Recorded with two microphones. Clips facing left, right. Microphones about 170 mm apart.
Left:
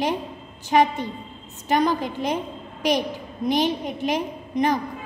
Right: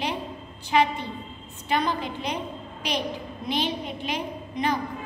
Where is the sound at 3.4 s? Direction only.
45° left (ahead or behind).